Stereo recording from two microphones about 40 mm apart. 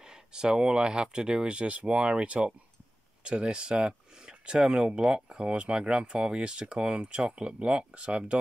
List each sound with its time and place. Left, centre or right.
0.0 s speech: centre